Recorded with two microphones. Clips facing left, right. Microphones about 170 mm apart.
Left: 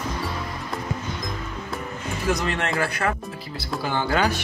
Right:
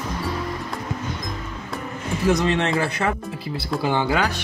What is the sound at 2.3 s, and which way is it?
Speech, 20° right (ahead or behind).